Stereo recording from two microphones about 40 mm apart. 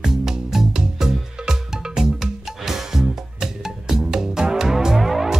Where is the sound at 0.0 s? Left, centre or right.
Centre.